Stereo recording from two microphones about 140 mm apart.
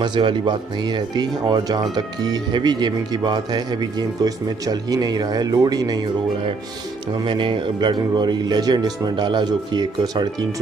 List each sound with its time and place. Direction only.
0.0 s speech: 35° right (ahead or behind)
7.2 s speech: 35° right (ahead or behind)